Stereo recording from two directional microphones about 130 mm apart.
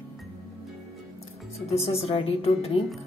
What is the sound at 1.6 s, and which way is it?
Speech, 50° left (ahead or behind).